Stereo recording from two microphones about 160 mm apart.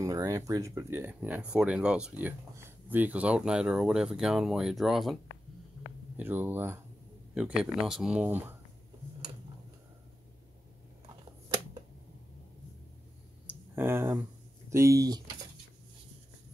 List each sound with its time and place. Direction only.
0.0 s speech: 20° right (ahead or behind); by 5.2 s centre (ahead or behind)
6.1 s speech: 15° right (ahead or behind)
13.5 s a sound: 15° right (ahead or behind)
14.7 s speech: 20° right (ahead or behind)